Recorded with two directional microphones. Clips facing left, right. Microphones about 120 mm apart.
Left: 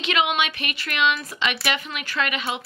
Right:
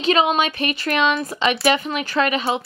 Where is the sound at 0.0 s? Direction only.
35° right (ahead or behind).